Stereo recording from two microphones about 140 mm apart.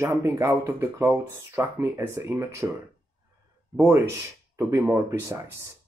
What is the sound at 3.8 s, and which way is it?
Speech, 20° right (ahead or behind).